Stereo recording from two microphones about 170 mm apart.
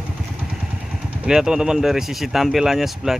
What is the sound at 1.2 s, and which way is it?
Speech, 5° right (ahead or behind).